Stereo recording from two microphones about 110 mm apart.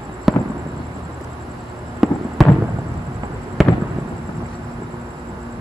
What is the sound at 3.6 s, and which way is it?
Fireworks, centre (ahead or behind).